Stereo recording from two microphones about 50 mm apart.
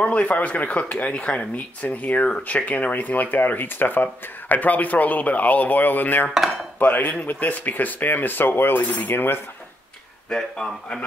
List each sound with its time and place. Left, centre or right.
0.0 s speech: left
9.0 s dishes: left
10.3 s speech: centre